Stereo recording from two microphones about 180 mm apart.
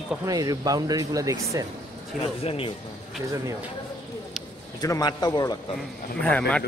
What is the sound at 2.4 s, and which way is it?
Speech, 30° left (ahead or behind).